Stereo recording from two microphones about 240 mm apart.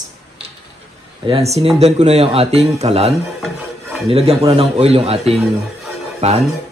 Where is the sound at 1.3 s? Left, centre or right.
Right.